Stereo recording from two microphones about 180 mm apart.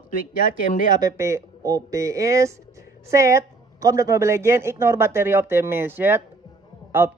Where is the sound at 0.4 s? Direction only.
45° left (ahead or behind).